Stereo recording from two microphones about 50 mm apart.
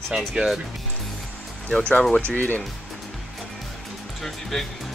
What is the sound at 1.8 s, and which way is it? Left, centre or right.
Speech, left.